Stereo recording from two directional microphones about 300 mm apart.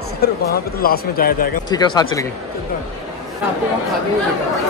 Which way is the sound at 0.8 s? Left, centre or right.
Left.